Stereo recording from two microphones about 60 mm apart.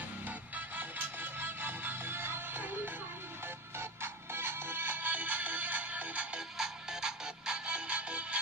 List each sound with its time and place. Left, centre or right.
0.6 s music: right
6.6 s music: centre